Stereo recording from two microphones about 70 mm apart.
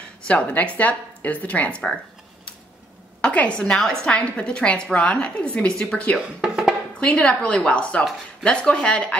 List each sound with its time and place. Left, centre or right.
0.3 s speech: centre
3.2 s a woman's voice: centre
6.4 s music: centre
7.0 s a woman's voice: centre